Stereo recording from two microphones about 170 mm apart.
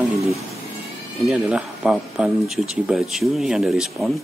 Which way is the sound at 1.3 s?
5° right (ahead or behind).